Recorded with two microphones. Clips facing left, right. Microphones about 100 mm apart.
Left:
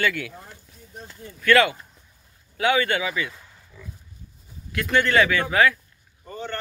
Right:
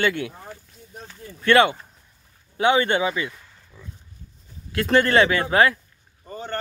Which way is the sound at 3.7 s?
30° right (ahead or behind).